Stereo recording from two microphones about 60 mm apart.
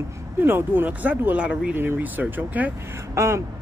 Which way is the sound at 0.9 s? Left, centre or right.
Right.